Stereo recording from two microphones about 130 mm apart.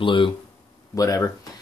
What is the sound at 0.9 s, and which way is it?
Speech, 25° left (ahead or behind).